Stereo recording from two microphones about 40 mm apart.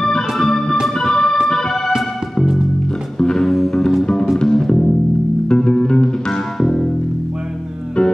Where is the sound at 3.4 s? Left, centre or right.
Centre.